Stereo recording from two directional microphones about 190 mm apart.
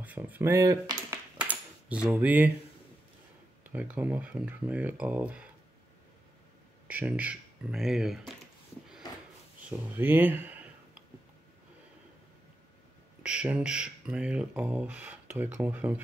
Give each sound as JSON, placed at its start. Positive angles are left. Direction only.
{"t": 0.0, "sound": "speech", "side_deg": -10}
{"t": 1.4, "sound": "a sound", "side_deg": -5}
{"t": 3.7, "sound": "speech", "side_deg": -10}
{"t": 6.9, "sound": "speech", "side_deg": -10}
{"t": 9.7, "sound": "a sound", "side_deg": -10}
{"t": 13.2, "sound": "speech", "side_deg": -5}